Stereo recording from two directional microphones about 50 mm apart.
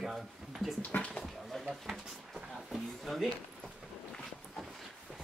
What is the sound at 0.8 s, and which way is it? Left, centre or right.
Speech, left.